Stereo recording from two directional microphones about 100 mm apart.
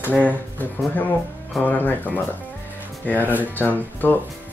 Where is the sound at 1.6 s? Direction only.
15° left (ahead or behind).